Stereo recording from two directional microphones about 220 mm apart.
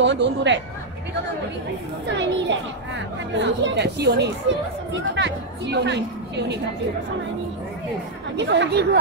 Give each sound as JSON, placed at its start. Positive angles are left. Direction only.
{"t": 0.0, "sound": "speech", "side_deg": -55}
{"t": 2.0, "sound": "speech", "side_deg": -55}
{"t": 8.4, "sound": "speech", "side_deg": -50}